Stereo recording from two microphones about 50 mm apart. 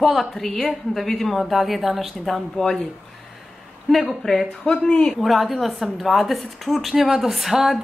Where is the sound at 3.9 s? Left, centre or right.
Centre.